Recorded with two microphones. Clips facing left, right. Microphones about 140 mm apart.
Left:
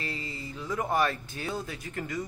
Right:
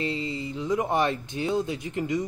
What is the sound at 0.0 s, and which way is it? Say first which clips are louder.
Speech: right 8 dB; 20° right (ahead or behind).